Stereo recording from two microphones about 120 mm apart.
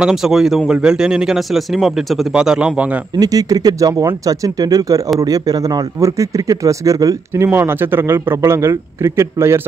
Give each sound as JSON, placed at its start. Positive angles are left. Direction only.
{"t": 0.0, "sound": "speech", "side_deg": -5}
{"t": 3.2, "sound": "a man's voice", "side_deg": -30}